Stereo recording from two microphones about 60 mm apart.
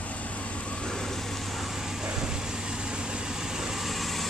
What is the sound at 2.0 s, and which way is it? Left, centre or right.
Vehicle, centre.